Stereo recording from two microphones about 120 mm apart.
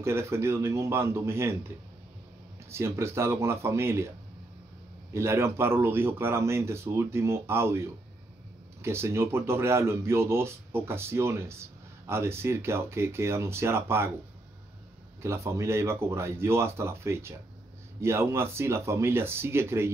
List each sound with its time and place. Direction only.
0.0 s speech: 20° right (ahead or behind)
2.7 s speech: 20° right (ahead or behind)
5.1 s speech: 20° right (ahead or behind)
15.2 s speech: 25° right (ahead or behind)